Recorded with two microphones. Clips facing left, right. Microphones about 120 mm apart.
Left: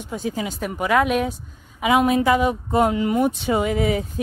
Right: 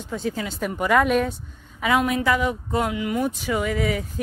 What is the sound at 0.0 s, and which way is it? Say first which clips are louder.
Speech: left 1 dB; 15° left (ahead or behind).